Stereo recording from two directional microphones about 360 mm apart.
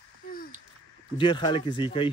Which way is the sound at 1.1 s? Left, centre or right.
Centre.